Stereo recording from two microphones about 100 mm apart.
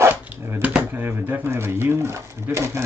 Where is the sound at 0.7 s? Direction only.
20° right (ahead or behind).